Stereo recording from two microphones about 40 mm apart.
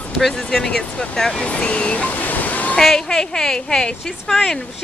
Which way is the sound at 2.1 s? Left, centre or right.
Left.